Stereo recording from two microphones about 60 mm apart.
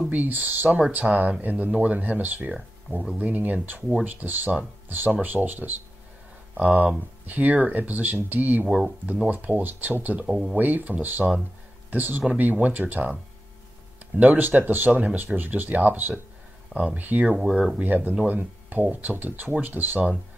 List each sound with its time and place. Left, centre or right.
0.1 s speech: right
0.7 s speech: centre
1.4 s speech: right
8.6 s speech: centre
9.0 s speech: right
10.2 s speech: centre
10.5 s speech: right
14.2 s speech: right
14.9 s speech: centre
15.3 s speech: right